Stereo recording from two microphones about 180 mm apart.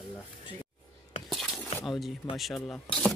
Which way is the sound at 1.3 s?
Centre (ahead or behind).